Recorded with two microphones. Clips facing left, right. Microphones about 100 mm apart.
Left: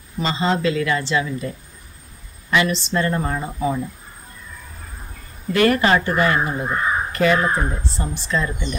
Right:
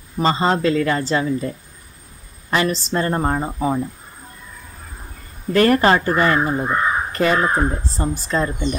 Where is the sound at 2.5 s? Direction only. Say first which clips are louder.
Even; 40° right (ahead or behind).